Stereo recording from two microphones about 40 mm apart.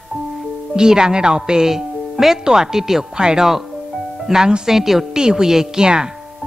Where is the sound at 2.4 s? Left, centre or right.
Centre.